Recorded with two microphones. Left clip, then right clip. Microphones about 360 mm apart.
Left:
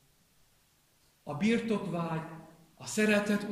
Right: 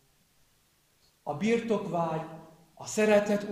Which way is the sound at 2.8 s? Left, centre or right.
Centre.